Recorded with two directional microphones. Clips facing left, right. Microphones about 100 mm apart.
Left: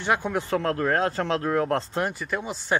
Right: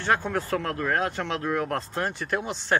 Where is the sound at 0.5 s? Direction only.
30° left (ahead or behind).